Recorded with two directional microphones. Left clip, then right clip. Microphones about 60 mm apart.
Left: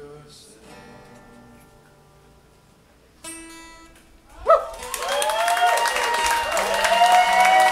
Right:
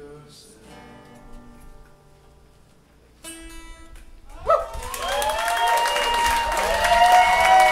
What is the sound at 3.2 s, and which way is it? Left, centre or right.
Music, left.